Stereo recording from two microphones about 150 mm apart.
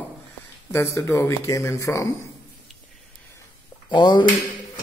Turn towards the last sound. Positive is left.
turn(degrees=30)  # may be behind; listen again after turning